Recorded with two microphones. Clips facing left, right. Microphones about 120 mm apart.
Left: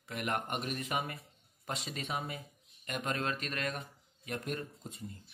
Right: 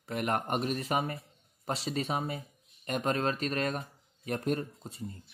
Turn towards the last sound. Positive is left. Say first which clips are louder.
# right 7 dB
turn(degrees=-35)  # may be behind; listen again after turning